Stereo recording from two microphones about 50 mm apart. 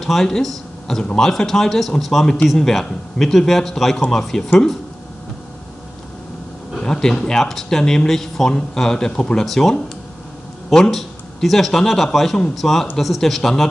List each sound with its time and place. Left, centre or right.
0.0 s speech: centre
6.8 s speech: centre
10.9 s speech: centre